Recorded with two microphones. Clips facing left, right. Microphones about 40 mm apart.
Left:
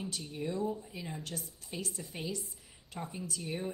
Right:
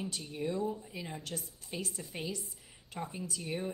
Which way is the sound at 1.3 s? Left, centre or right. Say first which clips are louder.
Right 1 dB; right.